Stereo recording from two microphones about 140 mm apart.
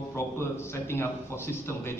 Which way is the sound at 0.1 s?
20° left (ahead or behind).